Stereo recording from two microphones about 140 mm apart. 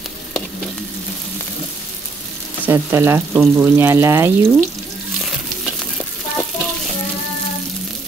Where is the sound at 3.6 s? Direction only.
20° right (ahead or behind).